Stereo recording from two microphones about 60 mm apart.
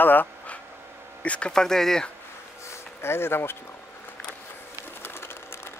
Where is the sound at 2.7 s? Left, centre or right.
Left.